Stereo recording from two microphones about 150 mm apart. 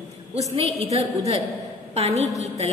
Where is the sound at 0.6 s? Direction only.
40° right (ahead or behind).